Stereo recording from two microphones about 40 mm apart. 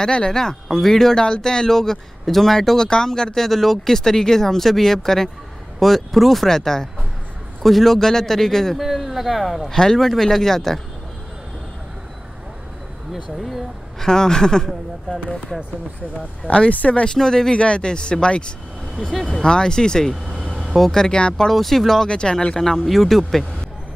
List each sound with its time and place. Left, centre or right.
0.0 s speech: centre
1.2 s speech: centre
6.5 s speech: centre
8.7 s speech: centre
9.4 s speech: centre
13.4 s speech: centre
13.9 s speech: centre
16.5 s speech: left
21.5 s speech: centre
22.0 s speech: left
22.8 s speech: centre